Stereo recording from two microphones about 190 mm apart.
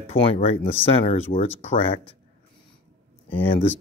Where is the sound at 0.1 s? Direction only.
30° left (ahead or behind).